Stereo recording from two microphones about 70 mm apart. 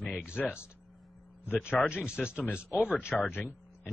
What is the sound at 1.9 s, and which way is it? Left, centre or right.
Speech, centre.